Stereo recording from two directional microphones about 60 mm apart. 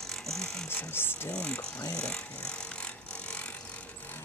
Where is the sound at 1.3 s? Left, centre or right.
Centre.